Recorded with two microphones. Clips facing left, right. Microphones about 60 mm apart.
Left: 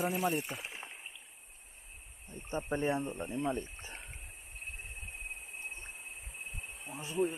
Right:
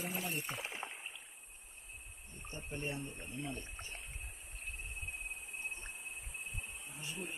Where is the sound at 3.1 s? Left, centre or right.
Left.